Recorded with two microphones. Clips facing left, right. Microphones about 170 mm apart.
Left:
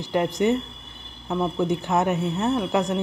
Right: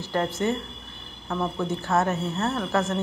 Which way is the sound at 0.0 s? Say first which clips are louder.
Left 4 dB; 15° left (ahead or behind).